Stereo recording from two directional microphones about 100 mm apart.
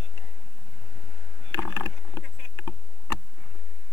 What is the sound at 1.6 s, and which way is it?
Rowboat, 35° left (ahead or behind).